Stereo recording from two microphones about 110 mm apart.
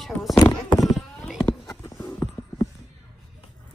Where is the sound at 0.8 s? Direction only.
Centre (ahead or behind).